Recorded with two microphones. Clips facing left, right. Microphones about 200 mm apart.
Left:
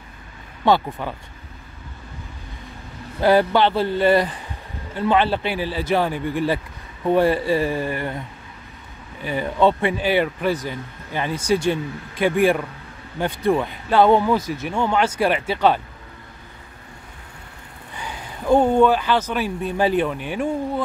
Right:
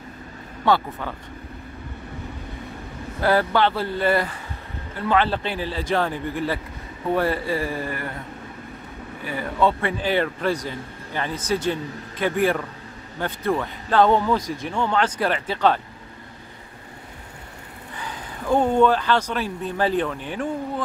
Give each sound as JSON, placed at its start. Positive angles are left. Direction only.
{"t": 0.7, "sound": "speech", "side_deg": 15}
{"t": 3.2, "sound": "speech", "side_deg": 15}
{"t": 9.2, "sound": "speech", "side_deg": 20}
{"t": 18.5, "sound": "speech", "side_deg": 10}